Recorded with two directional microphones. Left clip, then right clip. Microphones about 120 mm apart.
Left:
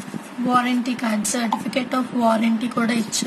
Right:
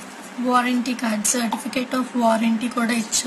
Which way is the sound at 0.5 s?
20° left (ahead or behind).